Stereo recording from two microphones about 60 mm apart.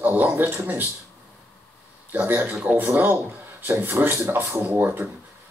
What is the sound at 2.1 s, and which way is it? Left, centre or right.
Speech, right.